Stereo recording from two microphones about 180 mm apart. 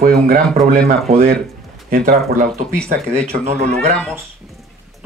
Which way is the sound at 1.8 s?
55° right (ahead or behind).